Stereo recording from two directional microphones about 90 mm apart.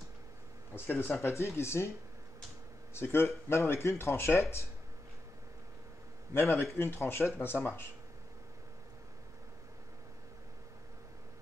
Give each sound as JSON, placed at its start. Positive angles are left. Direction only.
{"t": 0.7, "sound": "speech", "side_deg": 25}
{"t": 2.9, "sound": "speech", "side_deg": 25}
{"t": 6.3, "sound": "speech", "side_deg": 30}